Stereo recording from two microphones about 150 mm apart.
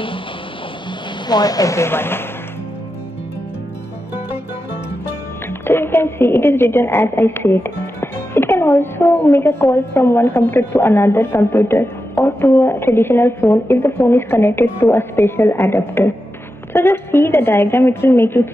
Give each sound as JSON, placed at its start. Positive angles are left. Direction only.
{"t": 1.2, "sound": "speech", "side_deg": 25}
{"t": 5.5, "sound": "a woman's voice", "side_deg": 15}